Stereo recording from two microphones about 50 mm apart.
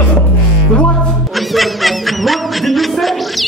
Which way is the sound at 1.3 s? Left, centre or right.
Centre.